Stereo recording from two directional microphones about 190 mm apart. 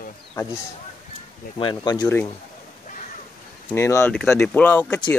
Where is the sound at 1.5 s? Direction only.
25° left (ahead or behind).